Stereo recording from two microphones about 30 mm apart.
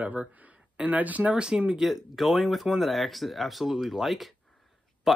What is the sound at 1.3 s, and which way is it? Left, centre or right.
Speech, right.